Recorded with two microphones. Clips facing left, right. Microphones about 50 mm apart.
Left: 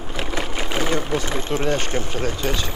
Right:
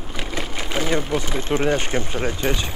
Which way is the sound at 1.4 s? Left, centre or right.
Centre.